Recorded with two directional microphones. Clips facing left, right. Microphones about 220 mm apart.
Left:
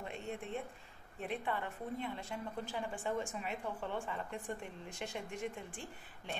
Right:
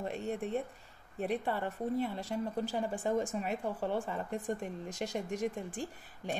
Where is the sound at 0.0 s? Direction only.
40° right (ahead or behind).